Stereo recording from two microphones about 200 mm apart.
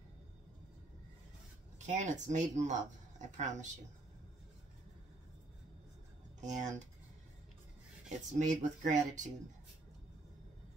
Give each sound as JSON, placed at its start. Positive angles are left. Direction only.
{"t": 1.8, "sound": "speech", "side_deg": -35}
{"t": 6.4, "sound": "speech", "side_deg": -35}
{"t": 8.1, "sound": "speech", "side_deg": -35}